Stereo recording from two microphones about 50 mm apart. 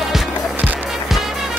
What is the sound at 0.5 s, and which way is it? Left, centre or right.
Music, right.